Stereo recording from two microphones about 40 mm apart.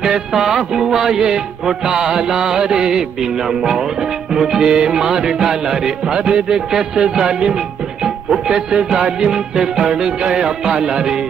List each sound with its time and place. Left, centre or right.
0.0 s music: centre
0.6 s a man's voice: centre
4.3 s music: centre
9.2 s a man's voice: centre
10.4 s music: right